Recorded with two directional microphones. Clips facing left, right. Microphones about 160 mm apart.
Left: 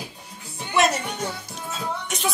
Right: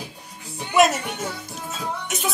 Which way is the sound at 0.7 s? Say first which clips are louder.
Right 3 dB; centre (ahead or behind).